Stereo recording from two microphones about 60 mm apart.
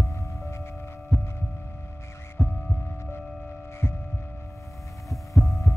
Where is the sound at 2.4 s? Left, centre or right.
Centre.